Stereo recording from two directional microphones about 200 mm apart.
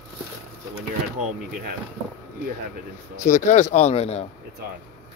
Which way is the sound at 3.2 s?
35° left (ahead or behind).